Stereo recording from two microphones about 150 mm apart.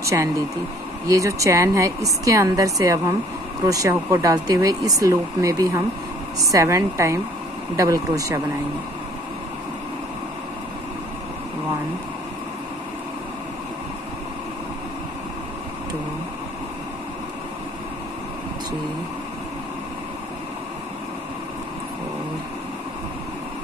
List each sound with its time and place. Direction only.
1.0 s speech: 20° right (ahead or behind)